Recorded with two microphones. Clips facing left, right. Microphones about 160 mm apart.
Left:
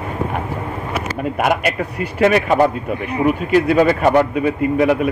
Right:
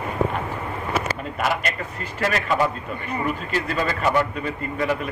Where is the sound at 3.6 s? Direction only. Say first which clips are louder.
Left 7 dB; 55° left (ahead or behind).